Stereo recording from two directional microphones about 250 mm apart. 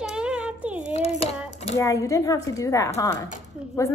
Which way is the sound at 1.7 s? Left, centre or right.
Centre.